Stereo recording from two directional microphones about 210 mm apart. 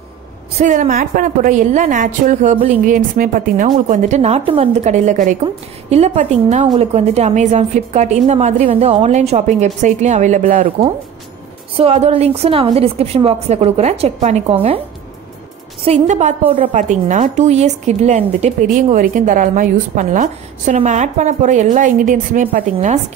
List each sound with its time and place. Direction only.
0.6 s a woman's voice: 35° right (ahead or behind)
15.8 s a woman's voice: 30° right (ahead or behind)